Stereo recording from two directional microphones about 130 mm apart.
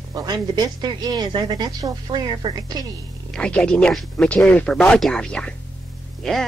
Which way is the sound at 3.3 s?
10° left (ahead or behind).